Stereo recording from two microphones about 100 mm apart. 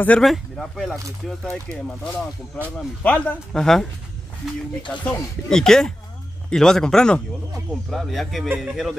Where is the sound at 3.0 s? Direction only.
15° left (ahead or behind).